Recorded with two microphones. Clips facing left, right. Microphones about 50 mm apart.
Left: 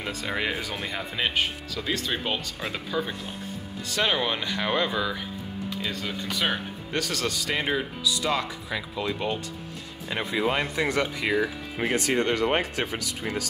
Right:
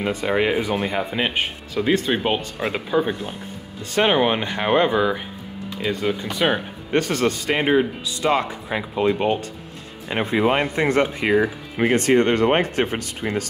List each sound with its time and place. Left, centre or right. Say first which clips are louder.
0.0 s speech: right 8 dB; right
6.9 s speech: right 9 dB; right